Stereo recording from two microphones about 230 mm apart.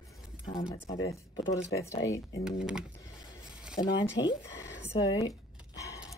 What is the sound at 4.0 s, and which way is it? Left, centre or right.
Speech, left.